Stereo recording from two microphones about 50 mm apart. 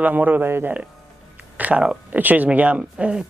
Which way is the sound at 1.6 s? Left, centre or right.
Right.